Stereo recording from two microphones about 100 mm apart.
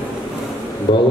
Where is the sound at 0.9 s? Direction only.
50° left (ahead or behind).